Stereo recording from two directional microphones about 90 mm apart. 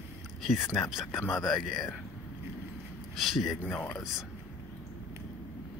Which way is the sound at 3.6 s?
15° left (ahead or behind).